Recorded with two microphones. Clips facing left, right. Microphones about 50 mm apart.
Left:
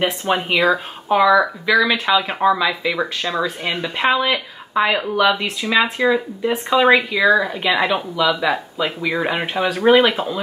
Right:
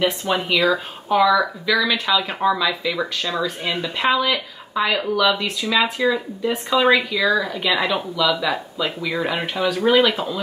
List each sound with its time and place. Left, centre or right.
0.0 s speech: left
1.0 s speech: centre
10.1 s speech: centre